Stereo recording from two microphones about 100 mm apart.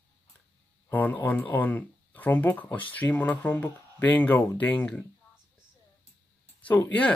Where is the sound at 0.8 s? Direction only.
15° left (ahead or behind).